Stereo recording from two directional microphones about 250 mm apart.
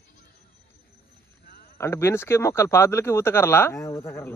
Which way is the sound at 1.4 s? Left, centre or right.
Left.